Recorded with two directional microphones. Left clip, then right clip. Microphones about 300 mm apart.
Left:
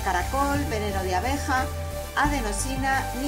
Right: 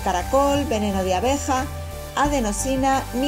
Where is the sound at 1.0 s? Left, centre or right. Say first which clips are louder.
Right 6 dB; right.